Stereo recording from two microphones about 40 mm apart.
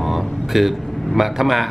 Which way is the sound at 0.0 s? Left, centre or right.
Centre.